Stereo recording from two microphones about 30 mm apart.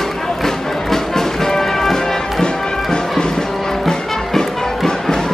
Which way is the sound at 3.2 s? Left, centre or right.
Left.